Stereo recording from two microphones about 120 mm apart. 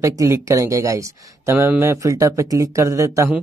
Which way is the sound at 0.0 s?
25° right (ahead or behind).